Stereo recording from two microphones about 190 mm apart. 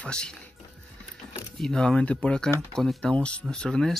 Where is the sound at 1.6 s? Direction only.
5° left (ahead or behind).